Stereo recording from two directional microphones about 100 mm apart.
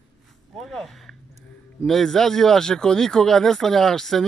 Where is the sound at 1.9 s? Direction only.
5° left (ahead or behind).